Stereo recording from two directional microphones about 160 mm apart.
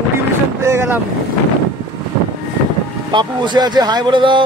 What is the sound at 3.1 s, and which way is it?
Speech, 30° right (ahead or behind).